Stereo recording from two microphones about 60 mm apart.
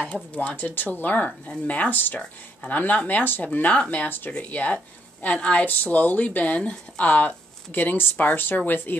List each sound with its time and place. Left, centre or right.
0.0 s speech: left